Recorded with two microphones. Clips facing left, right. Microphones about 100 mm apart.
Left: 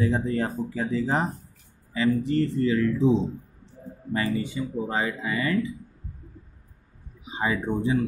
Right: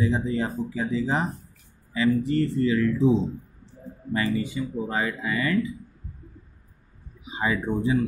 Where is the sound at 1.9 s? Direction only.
30° left (ahead or behind).